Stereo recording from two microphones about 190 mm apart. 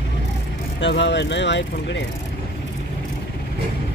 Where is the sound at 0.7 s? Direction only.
70° left (ahead or behind).